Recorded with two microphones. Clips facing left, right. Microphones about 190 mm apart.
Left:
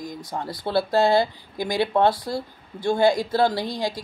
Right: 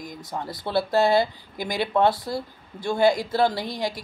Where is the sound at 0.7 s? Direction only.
20° right (ahead or behind).